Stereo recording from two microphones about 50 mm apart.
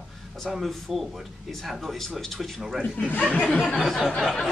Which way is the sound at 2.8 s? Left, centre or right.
Left.